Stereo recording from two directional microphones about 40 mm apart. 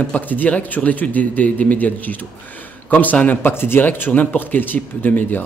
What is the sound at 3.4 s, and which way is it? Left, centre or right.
Speech, left.